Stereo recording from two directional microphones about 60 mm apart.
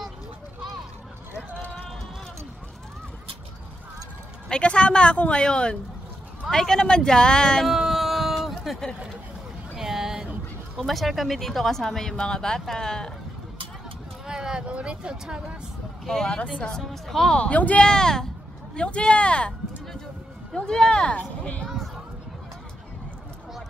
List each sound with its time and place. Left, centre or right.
4.5 s speech: centre
7.6 s a sound: centre
9.8 s a sound: centre
10.9 s speech: centre
14.2 s speech: centre
16.1 s speech: centre
17.4 s speech: left
17.8 s speech: centre
20.5 s speech: centre